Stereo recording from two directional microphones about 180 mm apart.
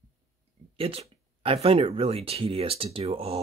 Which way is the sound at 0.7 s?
30° right (ahead or behind).